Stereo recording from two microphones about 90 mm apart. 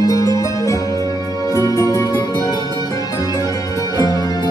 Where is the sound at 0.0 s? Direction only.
40° left (ahead or behind).